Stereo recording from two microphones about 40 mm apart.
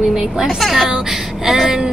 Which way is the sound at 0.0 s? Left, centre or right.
Centre.